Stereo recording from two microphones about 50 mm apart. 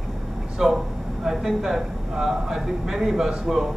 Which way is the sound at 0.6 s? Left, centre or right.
Centre.